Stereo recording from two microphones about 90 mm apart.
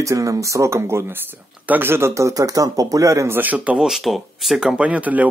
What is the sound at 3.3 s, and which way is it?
Speech, 20° right (ahead or behind).